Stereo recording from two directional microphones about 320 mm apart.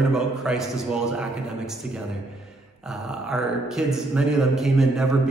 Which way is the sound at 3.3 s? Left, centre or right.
Centre.